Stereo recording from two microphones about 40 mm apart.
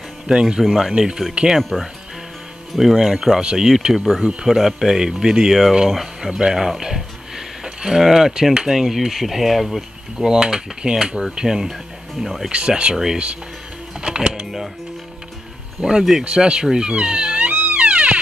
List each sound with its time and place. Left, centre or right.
0.3 s speech: centre
0.9 s speech: right
2.7 s speech: centre
5.5 s speech: centre
6.5 s a sound: centre
8.0 s speech: centre
10.2 s speech: centre
12.4 s speech: right
14.0 s a sound: right
15.8 s speech: centre
16.8 s music: right